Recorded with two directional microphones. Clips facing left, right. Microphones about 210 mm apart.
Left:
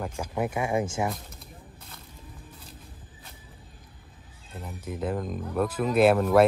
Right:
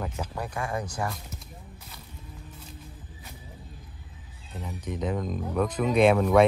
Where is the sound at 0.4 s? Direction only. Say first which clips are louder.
Left 6 dB; 20° left (ahead or behind).